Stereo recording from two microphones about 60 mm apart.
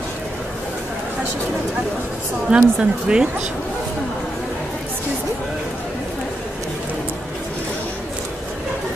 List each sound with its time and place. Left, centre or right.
2.5 s speech: centre